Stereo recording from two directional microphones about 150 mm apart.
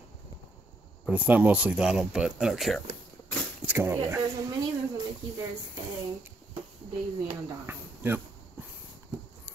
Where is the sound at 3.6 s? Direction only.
15° right (ahead or behind).